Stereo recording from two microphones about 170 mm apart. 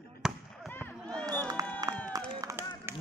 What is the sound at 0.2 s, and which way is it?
Fireworks, centre (ahead or behind).